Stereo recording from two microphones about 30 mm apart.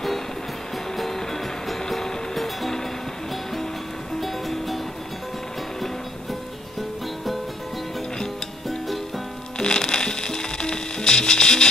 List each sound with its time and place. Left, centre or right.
0.9 s music: centre
4.2 s music: centre
8.6 s music: centre
9.6 s music: left